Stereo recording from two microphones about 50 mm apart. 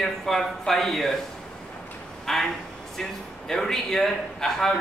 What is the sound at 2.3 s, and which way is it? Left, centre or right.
A man's voice, centre.